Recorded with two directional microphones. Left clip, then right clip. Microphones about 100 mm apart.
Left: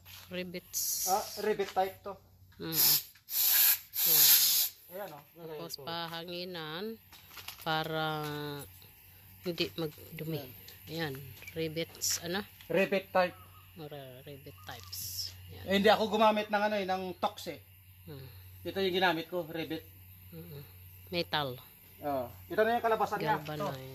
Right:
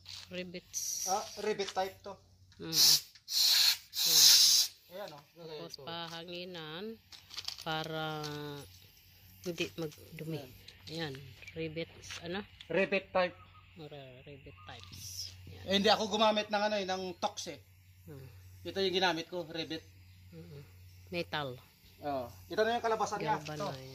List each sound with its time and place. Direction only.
0.0 s speech: centre (ahead or behind)
1.4 s speech: 20° left (ahead or behind)
2.6 s hiss: 5° left (ahead or behind)
7.6 s a man's voice: 5° left (ahead or behind)
11.5 s speech: 15° left (ahead or behind)
12.5 s a man's voice: centre (ahead or behind)
21.1 s a man's voice: centre (ahead or behind)